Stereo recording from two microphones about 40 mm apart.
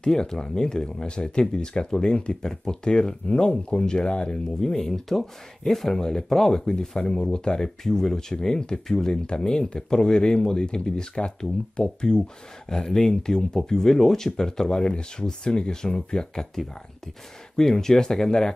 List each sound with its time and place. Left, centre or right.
0.0 s speech: centre
4.6 s speech: centre
17.6 s speech: centre